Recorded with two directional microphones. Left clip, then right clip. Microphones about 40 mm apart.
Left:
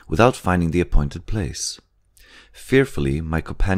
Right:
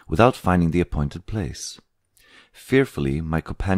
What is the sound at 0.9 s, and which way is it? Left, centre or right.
Speech, right.